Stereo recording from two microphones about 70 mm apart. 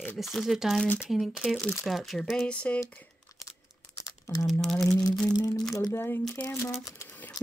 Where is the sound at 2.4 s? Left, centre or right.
Centre.